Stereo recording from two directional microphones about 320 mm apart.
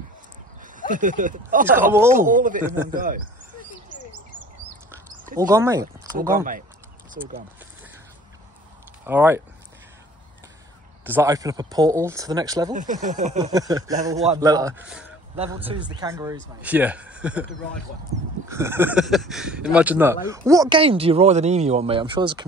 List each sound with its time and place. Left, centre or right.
0.6 s speech: right
1.7 s speech: centre
2.1 s speech: right
5.4 s speech: centre
9.0 s speech: centre
11.1 s speech: centre
12.7 s speech: right; by 15.1 s centre
15.3 s speech: centre
18.5 s speech: centre